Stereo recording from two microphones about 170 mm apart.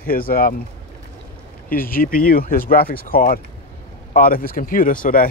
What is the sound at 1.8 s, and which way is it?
Speech, 55° left (ahead or behind).